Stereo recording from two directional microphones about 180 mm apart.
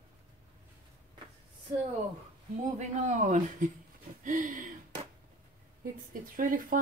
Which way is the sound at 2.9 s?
45° right (ahead or behind).